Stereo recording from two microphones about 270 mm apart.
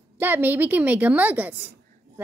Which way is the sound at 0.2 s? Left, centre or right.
Centre.